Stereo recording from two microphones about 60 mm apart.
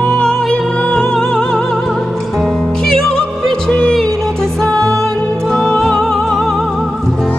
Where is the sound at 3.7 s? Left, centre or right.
Centre.